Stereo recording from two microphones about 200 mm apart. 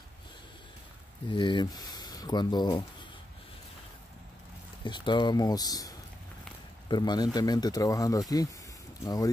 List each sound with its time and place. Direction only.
1.3 s speech: 25° left (ahead or behind)
4.8 s speech: 25° left (ahead or behind)